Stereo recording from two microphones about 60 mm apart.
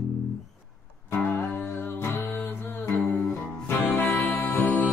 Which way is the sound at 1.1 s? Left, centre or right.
Left.